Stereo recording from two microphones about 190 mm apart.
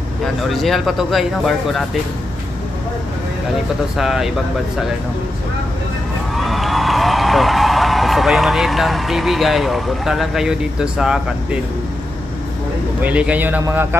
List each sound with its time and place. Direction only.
0.2 s speech: centre (ahead or behind)
3.9 s speech: centre (ahead or behind)
6.3 s speech: centre (ahead or behind)
13.0 s a man's voice: 5° right (ahead or behind)